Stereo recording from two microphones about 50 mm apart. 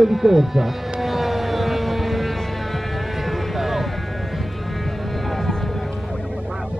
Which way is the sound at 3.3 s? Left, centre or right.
Centre.